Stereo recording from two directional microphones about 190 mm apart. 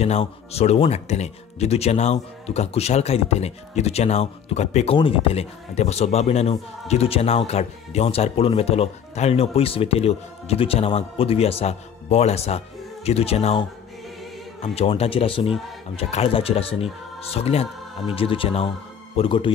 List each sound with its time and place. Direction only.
0.0 s speech: 35° left (ahead or behind)